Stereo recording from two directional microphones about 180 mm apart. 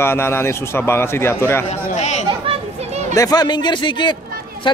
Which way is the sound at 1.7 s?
40° left (ahead or behind).